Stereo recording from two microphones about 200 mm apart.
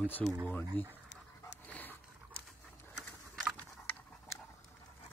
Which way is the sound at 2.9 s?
Centre (ahead or behind).